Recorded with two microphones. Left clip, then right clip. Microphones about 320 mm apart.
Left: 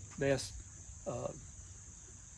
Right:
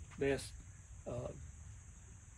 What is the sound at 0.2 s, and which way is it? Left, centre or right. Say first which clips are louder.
Speech: left 3 dB; left.